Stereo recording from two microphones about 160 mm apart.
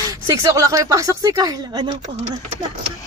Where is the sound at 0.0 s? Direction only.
20° right (ahead or behind).